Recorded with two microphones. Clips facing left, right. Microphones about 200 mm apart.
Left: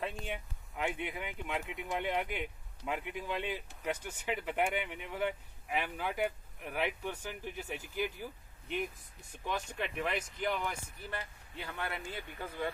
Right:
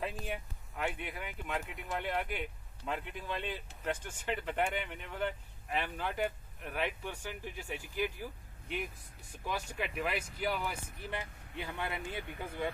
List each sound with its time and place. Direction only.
0.0 s a sound: 5° right (ahead or behind)
0.7 s speech: 15° left (ahead or behind)
7.1 s speech: 10° right (ahead or behind)
11.1 s speech: 20° right (ahead or behind)